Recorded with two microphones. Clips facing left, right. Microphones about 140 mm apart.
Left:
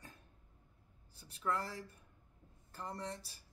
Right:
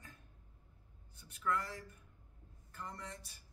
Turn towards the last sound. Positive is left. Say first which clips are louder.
# left 4 dB
turn(degrees=35)  # may be behind; listen again after turning